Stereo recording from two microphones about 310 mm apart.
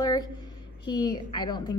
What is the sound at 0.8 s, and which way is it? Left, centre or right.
Speech, left.